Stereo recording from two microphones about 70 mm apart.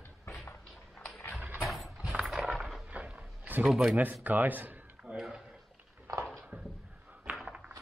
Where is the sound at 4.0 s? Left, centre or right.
Right.